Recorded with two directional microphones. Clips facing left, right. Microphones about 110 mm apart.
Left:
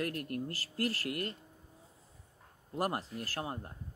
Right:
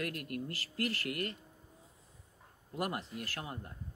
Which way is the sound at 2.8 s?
35° left (ahead or behind).